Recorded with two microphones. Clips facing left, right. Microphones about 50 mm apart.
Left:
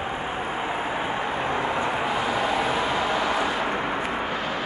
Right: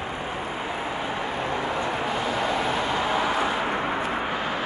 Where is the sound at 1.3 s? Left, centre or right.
Centre.